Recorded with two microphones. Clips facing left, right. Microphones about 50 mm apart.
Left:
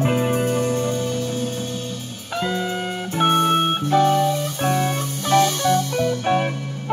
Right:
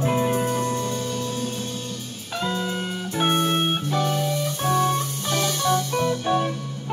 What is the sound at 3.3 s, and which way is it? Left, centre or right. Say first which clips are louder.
Music: left 5 dB; left.